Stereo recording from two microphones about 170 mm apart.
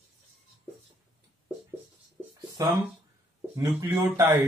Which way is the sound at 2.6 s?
20° right (ahead or behind).